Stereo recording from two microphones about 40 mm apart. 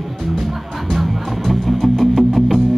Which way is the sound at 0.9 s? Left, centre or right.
Centre.